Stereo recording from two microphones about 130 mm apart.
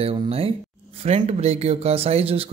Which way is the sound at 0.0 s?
50° right (ahead or behind).